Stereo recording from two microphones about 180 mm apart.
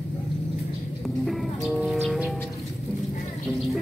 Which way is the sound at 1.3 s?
Centre (ahead or behind).